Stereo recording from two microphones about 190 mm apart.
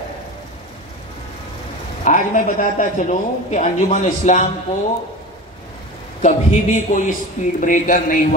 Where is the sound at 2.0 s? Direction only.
40° left (ahead or behind).